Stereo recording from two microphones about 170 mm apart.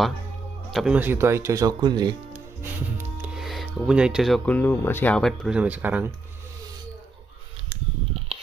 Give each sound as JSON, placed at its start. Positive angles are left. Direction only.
{"t": 0.7, "sound": "speech", "side_deg": -5}
{"t": 3.0, "sound": "speech", "side_deg": -10}